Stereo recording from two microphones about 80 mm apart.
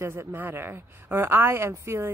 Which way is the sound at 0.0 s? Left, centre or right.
Right.